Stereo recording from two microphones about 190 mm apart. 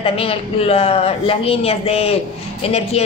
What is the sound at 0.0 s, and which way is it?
Speech, 30° left (ahead or behind).